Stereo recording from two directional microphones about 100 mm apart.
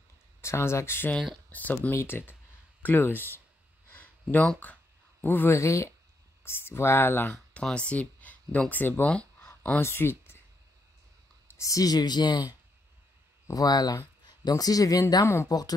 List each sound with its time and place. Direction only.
0.4 s speech: 25° left (ahead or behind)
3.9 s a sound: 15° left (ahead or behind)
4.6 s speech: 15° left (ahead or behind)
9.4 s a sound: 25° left (ahead or behind)
9.8 s speech: 25° left (ahead or behind)
11.5 s speech: 35° left (ahead or behind)
13.5 s speech: 40° left (ahead or behind)